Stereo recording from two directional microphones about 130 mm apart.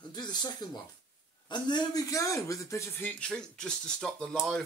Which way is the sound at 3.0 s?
10° left (ahead or behind).